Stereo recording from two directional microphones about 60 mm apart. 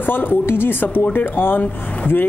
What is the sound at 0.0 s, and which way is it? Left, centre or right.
Speech, left.